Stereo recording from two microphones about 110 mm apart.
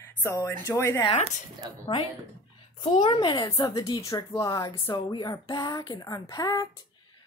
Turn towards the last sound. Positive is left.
turn(degrees=35)  # may be behind; listen again after turning